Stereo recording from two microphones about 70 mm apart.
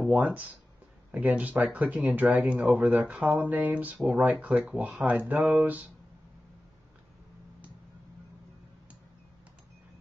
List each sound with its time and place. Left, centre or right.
0.1 s speech: right